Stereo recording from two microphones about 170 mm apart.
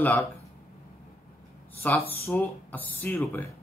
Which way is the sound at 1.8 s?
10° left (ahead or behind).